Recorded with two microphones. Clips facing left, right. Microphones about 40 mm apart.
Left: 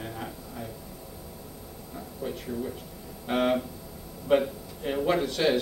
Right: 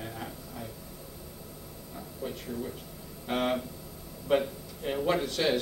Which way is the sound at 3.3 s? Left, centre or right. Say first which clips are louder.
Left 4 dB; centre.